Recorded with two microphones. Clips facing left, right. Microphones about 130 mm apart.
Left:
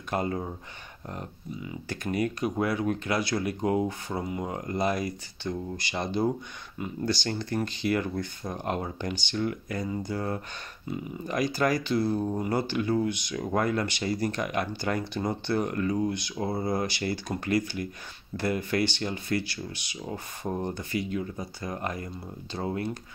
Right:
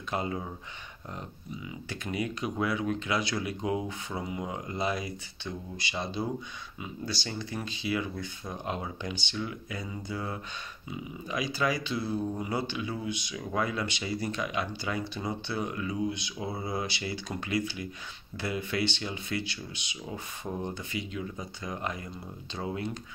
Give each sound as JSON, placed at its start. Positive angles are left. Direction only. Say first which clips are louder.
{"t": 0.1, "sound": "speech", "louder": "left 3 dB", "side_deg": 45}